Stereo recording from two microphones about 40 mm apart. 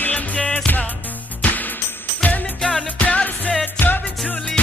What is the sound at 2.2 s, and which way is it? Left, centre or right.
Music, left.